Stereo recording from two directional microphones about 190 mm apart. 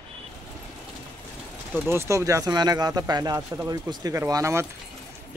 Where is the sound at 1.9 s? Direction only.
15° right (ahead or behind).